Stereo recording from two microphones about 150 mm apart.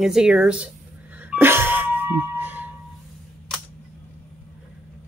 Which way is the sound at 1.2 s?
10° right (ahead or behind).